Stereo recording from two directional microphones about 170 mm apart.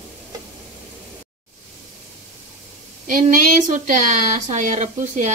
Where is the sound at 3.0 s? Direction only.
50° right (ahead or behind).